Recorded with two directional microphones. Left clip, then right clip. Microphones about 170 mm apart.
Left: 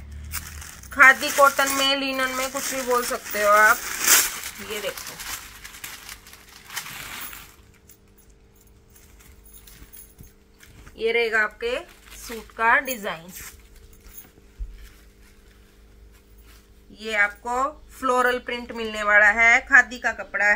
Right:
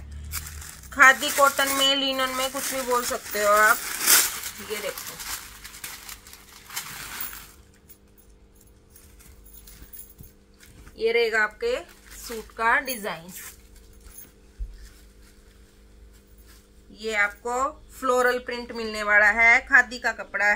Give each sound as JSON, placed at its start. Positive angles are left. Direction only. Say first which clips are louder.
{"t": 0.3, "sound": "speech", "louder": "left 2 dB", "side_deg": 5}
{"t": 4.8, "sound": "crumpling", "louder": "left 2 dB", "side_deg": 20}
{"t": 6.7, "sound": "a sound", "louder": "left 2 dB", "side_deg": 15}
{"t": 10.9, "sound": "speech", "louder": "even", "side_deg": 5}
{"t": 16.9, "sound": "speech", "louder": "left 2 dB", "side_deg": 0}